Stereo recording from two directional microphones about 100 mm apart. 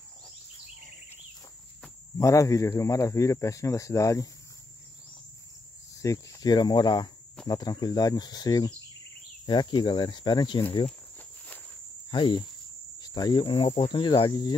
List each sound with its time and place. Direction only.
2.1 s speech: 30° left (ahead or behind)
5.9 s speech: 35° left (ahead or behind); by 10.6 s 50° left (ahead or behind)
11.1 s walk: 15° left (ahead or behind)
12.1 s speech: 55° left (ahead or behind)
13.0 s speech: 45° left (ahead or behind)